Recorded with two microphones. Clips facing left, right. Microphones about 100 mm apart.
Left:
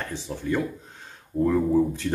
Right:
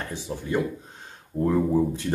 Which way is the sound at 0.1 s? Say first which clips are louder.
Even; 15° right (ahead or behind).